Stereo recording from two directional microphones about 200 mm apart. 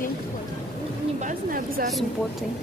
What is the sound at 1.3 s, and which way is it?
Speech, 45° right (ahead or behind).